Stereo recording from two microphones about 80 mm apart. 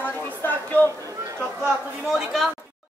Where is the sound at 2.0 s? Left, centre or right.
Centre.